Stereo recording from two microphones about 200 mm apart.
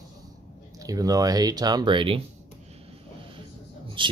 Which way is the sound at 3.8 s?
25° right (ahead or behind).